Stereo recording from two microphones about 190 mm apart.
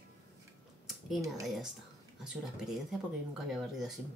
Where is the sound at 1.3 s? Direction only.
Centre (ahead or behind).